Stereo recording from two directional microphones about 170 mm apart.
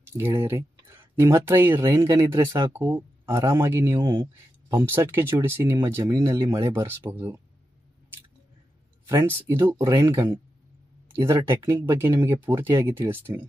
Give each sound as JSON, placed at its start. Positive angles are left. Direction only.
{"t": 0.3, "sound": "speech", "side_deg": -15}
{"t": 9.0, "sound": "speech", "side_deg": -15}